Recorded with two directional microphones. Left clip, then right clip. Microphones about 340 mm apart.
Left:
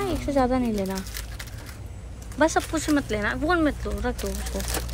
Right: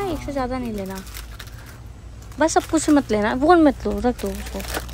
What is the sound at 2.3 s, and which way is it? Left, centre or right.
Speech, centre.